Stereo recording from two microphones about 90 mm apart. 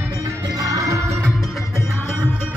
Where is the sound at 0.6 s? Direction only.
40° right (ahead or behind).